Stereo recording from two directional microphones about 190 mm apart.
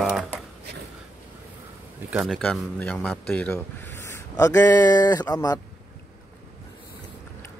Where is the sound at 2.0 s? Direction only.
Centre (ahead or behind); by 5.6 s 20° left (ahead or behind).